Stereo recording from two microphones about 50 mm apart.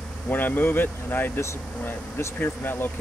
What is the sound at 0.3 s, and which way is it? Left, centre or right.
Speech, left.